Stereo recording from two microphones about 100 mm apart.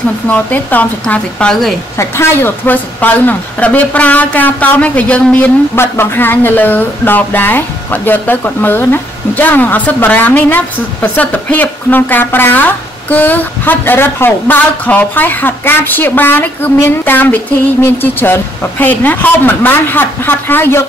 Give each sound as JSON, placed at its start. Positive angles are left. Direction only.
{"t": 0.3, "sound": "speech", "side_deg": 15}
{"t": 2.0, "sound": "speech", "side_deg": 25}